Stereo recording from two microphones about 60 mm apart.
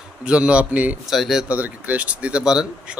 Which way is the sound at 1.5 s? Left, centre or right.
Right.